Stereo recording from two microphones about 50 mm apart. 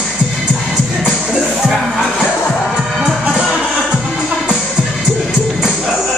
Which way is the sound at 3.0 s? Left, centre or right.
Centre.